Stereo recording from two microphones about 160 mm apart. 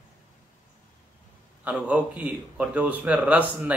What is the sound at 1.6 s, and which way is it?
Speech, 10° right (ahead or behind).